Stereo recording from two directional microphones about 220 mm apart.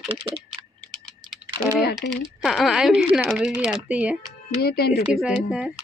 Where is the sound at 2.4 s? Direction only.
Centre (ahead or behind).